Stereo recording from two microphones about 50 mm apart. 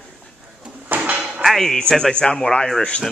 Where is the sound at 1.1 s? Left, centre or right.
Centre.